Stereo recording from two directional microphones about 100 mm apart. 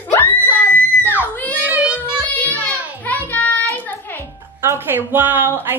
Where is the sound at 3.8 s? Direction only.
20° left (ahead or behind).